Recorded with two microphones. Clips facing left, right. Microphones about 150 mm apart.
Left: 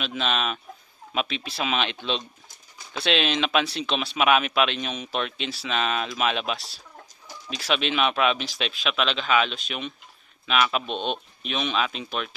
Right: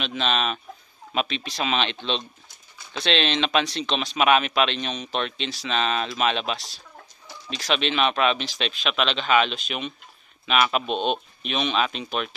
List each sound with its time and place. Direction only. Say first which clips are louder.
0.0 s speech: right 2 dB; 5° left (ahead or behind)